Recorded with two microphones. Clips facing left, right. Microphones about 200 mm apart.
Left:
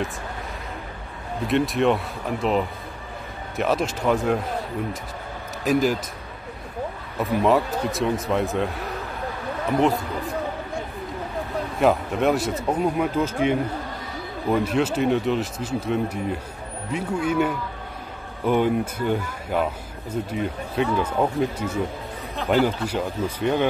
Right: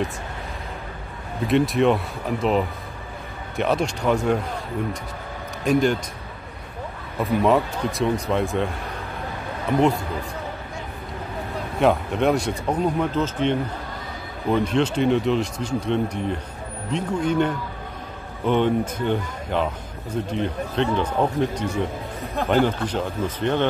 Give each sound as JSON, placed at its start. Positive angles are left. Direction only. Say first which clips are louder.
{"t": 1.5, "sound": "speech", "louder": "right 2 dB", "side_deg": 0}
{"t": 5.6, "sound": "speech", "louder": "right 1 dB", "side_deg": 0}
{"t": 7.2, "sound": "speech", "louder": "right 1 dB", "side_deg": 0}
{"t": 9.8, "sound": "speech", "louder": "right 1 dB", "side_deg": 0}
{"t": 11.8, "sound": "speech", "louder": "right 1 dB", "side_deg": 0}